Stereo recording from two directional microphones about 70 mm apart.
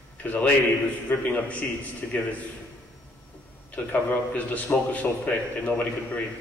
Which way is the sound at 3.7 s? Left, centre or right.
Left.